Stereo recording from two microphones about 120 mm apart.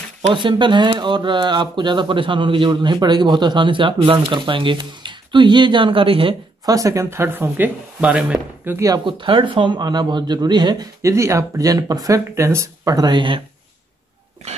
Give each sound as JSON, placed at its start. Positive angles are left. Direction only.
{"t": 0.3, "sound": "speech", "side_deg": -45}
{"t": 6.6, "sound": "speech", "side_deg": -30}
{"t": 8.7, "sound": "speech", "side_deg": -30}
{"t": 9.0, "sound": "speech", "side_deg": -45}
{"t": 11.0, "sound": "speech", "side_deg": -25}